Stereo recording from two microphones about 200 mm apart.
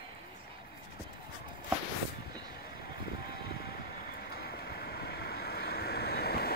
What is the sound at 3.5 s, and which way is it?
Vehicle, 50° left (ahead or behind).